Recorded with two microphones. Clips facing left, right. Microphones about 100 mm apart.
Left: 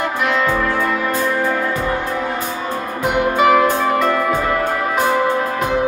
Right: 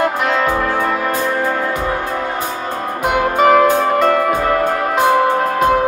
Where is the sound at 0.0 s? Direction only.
45° right (ahead or behind).